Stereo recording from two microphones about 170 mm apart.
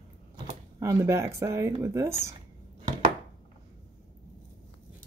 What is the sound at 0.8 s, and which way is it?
Speech, 15° right (ahead or behind).